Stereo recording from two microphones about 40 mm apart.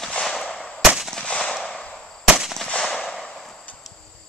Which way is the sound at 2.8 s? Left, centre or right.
Centre.